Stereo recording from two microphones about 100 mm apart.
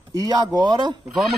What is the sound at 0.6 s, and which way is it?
Speech, 45° right (ahead or behind).